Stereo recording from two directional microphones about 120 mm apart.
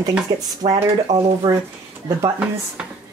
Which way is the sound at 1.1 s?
75° right (ahead or behind).